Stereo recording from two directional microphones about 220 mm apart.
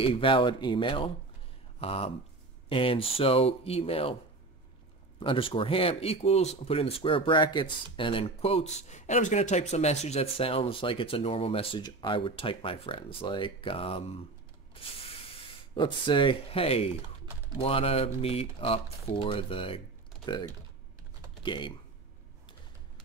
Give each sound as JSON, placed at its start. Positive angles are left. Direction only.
{"t": 0.0, "sound": "speech", "side_deg": 25}
{"t": 5.2, "sound": "speech", "side_deg": 25}
{"t": 14.7, "sound": "spray", "side_deg": 25}
{"t": 17.6, "sound": "speech", "side_deg": 25}